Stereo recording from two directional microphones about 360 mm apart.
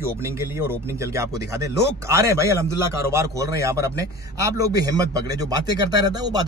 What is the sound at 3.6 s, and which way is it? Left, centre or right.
Speech, centre.